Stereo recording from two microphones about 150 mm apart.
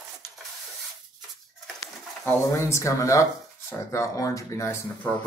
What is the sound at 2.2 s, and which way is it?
Speech, 20° left (ahead or behind).